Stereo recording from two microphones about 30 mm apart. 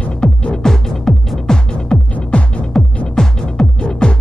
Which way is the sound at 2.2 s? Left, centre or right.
Left.